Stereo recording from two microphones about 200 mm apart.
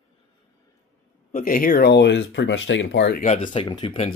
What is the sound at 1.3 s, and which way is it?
Speech, 45° left (ahead or behind).